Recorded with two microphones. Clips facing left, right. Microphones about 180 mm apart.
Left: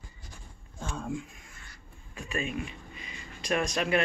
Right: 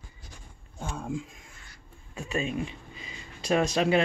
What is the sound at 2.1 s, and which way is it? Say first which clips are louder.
Speech: right 3 dB; 25° right (ahead or behind).